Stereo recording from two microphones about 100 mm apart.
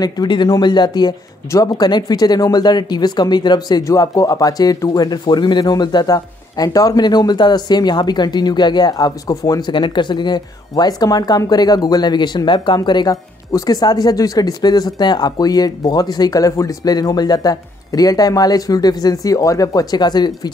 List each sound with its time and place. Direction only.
0.0 s speech: 45° left (ahead or behind)
9.7 s speech: 50° left (ahead or behind)